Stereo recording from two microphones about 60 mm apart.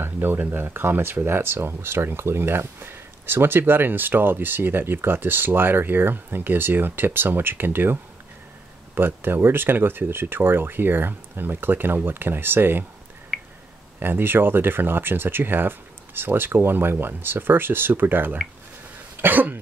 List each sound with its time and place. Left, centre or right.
0.0 s speech: right
13.3 s a sound: centre
13.9 s speech: right
19.2 s cough: right